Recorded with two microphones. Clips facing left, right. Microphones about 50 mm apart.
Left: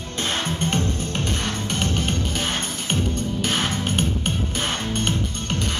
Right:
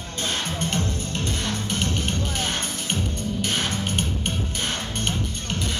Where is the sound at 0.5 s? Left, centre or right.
Left.